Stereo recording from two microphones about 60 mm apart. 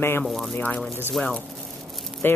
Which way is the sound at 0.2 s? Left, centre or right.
Centre.